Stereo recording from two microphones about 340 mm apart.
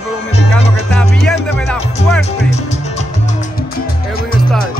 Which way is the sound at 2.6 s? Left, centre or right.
Centre.